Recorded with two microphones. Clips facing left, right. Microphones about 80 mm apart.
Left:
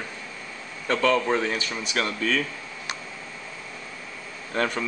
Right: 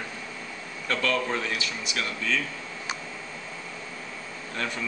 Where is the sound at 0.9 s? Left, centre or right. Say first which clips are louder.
Left 5 dB; left.